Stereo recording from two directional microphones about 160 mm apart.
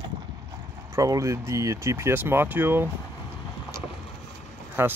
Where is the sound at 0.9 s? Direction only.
20° right (ahead or behind).